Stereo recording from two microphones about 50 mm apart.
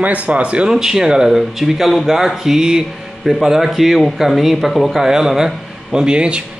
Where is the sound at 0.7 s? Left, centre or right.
Centre.